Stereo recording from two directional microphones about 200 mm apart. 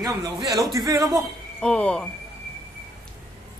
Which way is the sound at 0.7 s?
15° right (ahead or behind).